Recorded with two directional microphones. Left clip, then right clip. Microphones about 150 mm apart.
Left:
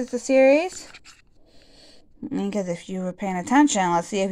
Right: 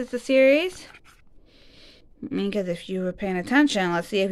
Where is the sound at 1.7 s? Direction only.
15° right (ahead or behind).